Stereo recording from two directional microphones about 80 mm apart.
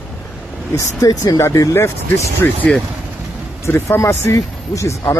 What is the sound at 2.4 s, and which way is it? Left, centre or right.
Speech, left.